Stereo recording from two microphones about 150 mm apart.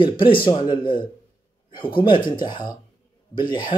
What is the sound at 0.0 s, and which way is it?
Speech, 35° left (ahead or behind).